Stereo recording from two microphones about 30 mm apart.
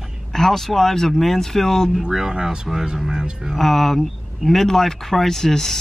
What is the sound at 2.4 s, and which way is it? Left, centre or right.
Speech, centre.